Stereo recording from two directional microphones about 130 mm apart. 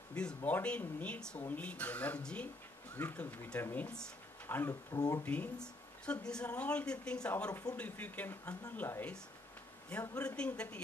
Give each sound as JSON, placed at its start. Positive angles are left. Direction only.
{"t": 0.1, "sound": "speech", "side_deg": 5}
{"t": 4.9, "sound": "speech", "side_deg": 30}
{"t": 5.2, "sound": "speech", "side_deg": 10}